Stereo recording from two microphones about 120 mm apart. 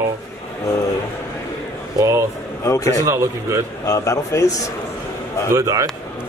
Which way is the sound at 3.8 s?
25° left (ahead or behind).